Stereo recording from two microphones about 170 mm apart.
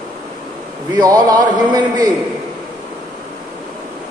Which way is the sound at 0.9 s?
20° right (ahead or behind).